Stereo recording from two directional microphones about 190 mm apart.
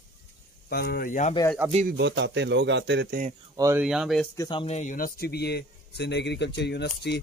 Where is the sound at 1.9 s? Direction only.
65° right (ahead or behind).